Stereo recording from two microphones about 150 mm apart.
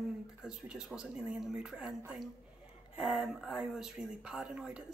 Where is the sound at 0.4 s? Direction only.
5° right (ahead or behind).